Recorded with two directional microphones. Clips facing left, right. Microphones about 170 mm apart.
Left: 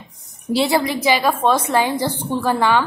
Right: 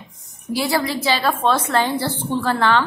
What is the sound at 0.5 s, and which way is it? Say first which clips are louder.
A woman's voice: left 3 dB; 25° left (ahead or behind).